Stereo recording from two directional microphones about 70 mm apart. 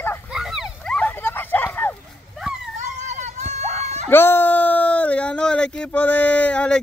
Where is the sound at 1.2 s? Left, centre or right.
Left.